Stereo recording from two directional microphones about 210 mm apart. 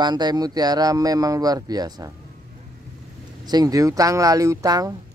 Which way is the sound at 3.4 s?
20° right (ahead or behind).